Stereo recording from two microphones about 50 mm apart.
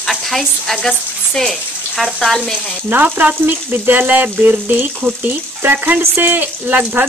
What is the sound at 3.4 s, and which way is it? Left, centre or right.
Speech, right.